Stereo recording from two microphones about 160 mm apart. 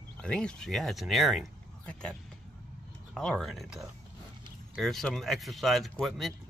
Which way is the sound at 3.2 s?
Centre (ahead or behind).